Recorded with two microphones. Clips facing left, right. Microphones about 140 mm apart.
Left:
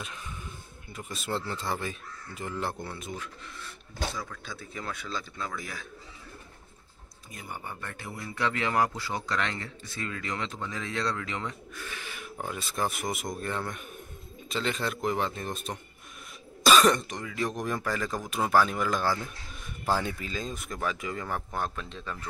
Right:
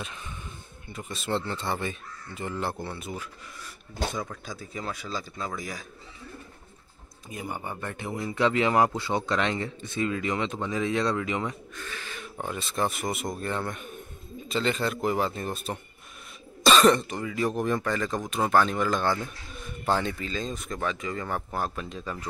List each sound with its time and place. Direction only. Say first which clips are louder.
0.8 s speech: right 3 dB; centre (ahead or behind)
7.2 s speech: right 6 dB; 20° right (ahead or behind)
11.7 s speech: right 2 dB; 10° left (ahead or behind); by 22.2 s 10° right (ahead or behind)